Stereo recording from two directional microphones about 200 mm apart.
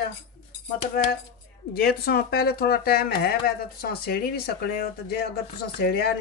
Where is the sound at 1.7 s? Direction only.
50° left (ahead or behind).